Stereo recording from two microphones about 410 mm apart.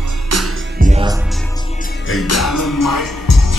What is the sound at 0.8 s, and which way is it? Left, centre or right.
Music, centre.